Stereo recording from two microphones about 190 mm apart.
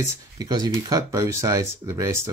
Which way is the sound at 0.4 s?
20° right (ahead or behind).